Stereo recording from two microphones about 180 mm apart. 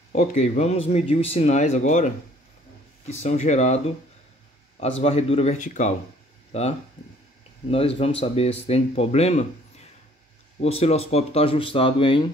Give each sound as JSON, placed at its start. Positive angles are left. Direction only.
{"t": 0.1, "sound": "speech", "side_deg": 40}
{"t": 5.0, "sound": "speech", "side_deg": 35}
{"t": 7.7, "sound": "speech", "side_deg": 30}
{"t": 10.6, "sound": "speech", "side_deg": 35}